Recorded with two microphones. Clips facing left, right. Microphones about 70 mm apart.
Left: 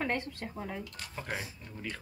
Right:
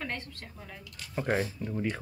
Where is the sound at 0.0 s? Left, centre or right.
Left.